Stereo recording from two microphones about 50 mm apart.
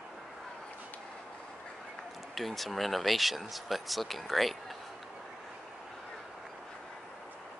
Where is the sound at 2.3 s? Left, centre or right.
Centre.